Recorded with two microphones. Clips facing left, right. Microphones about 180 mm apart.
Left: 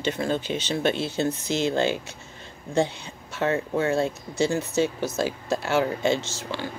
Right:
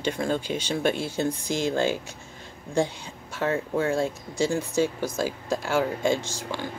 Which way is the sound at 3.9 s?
10° right (ahead or behind).